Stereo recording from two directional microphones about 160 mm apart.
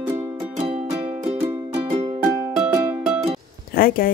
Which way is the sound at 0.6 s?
35° right (ahead or behind).